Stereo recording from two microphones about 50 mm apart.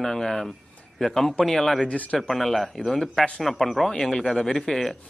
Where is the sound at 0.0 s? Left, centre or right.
Centre.